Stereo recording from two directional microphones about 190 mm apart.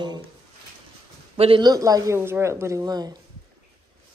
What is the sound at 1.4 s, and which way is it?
Speech, 25° right (ahead or behind).